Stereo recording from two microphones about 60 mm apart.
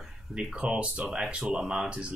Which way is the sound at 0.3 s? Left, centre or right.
Centre.